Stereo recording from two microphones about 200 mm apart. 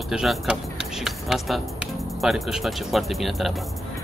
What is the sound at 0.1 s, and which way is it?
Speech, 5° right (ahead or behind).